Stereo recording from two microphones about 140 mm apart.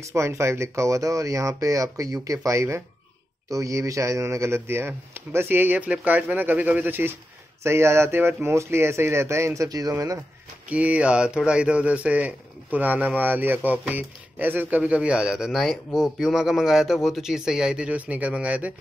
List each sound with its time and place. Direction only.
0.0 s speech: 20° right (ahead or behind)
10.7 s speech: 10° right (ahead or behind)